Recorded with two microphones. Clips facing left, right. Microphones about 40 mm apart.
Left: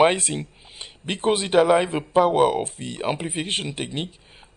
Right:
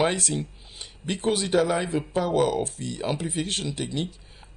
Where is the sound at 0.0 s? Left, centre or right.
Left.